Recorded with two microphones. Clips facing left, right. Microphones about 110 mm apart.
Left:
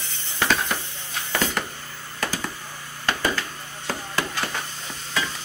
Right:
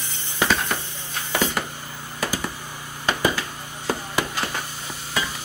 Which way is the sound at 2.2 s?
10° right (ahead or behind).